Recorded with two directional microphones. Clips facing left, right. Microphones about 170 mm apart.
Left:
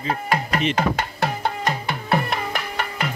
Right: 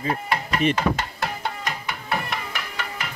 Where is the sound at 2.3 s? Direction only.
50° left (ahead or behind).